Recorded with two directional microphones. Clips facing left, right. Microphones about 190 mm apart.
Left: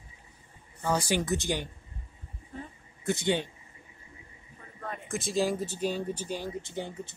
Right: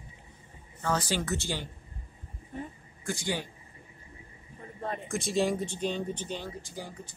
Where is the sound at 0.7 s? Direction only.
15° left (ahead or behind).